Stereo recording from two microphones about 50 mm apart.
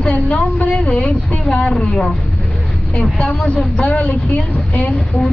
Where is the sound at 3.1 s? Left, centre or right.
Left.